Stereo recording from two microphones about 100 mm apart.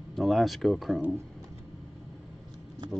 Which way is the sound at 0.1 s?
Centre (ahead or behind).